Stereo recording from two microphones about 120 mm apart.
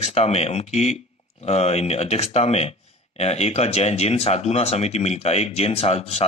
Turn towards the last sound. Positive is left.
turn(degrees=60)  # may be behind; listen again after turning